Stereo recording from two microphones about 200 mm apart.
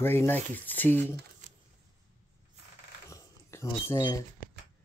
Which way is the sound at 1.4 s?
40° right (ahead or behind).